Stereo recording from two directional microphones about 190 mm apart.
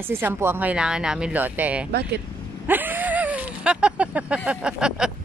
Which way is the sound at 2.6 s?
10° right (ahead or behind).